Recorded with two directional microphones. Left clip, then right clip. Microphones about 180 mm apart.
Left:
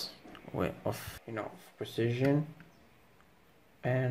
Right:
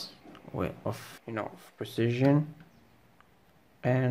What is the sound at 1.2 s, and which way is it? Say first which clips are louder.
Speech: right 5 dB; 25° right (ahead or behind).